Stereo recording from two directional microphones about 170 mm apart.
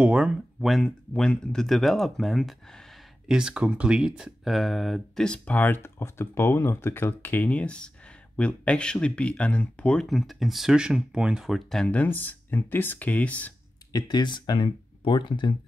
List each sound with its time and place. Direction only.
0.0 s speech: 5° right (ahead or behind)
13.9 s speech: 25° left (ahead or behind)